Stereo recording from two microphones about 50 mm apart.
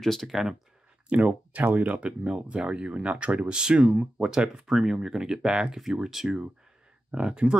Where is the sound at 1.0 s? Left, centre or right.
Right.